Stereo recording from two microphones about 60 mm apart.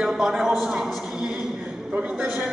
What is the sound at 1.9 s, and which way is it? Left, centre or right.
Speech, centre.